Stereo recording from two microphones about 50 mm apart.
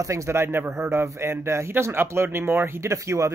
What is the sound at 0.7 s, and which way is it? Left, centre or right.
Speech, right.